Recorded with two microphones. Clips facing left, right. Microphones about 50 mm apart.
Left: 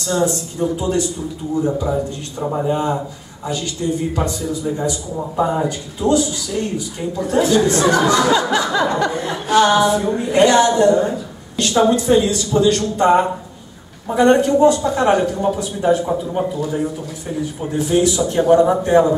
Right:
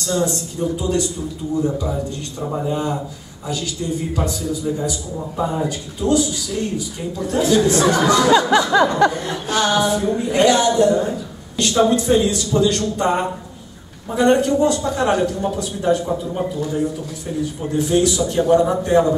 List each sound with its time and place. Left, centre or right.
0.0 s a man's voice: centre
5.3 s speech: centre
5.7 s speech: centre
11.1 s a sound: centre
12.0 s a man's voice: centre